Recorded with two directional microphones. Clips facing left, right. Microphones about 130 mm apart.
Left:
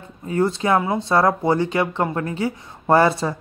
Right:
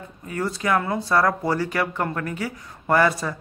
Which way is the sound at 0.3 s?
25° left (ahead or behind).